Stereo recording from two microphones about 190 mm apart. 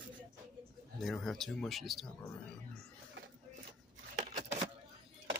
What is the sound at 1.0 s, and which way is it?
Speech, centre (ahead or behind).